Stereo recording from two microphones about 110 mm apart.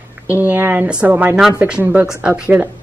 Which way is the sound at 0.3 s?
15° right (ahead or behind).